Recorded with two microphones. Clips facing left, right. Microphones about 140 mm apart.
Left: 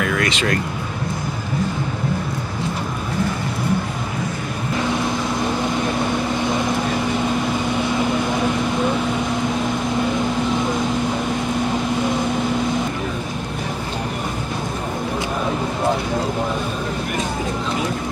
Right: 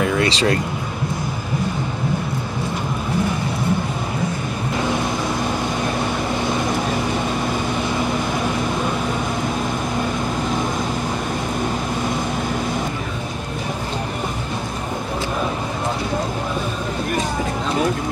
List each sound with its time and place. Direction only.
0.0 s speech: 25° right (ahead or behind)